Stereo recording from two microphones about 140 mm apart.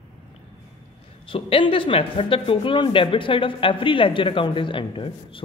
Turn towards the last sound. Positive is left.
turn(degrees=40)  # may be behind; listen again after turning